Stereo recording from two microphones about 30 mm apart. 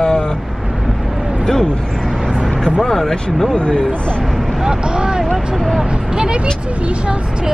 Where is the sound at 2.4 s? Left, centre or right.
Centre.